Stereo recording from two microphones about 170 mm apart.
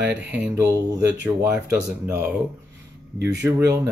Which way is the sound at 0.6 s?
20° right (ahead or behind).